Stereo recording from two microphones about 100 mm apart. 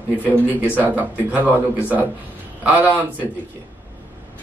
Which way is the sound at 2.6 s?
15° right (ahead or behind).